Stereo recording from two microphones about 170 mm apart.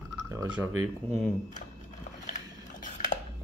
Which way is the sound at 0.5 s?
5° right (ahead or behind).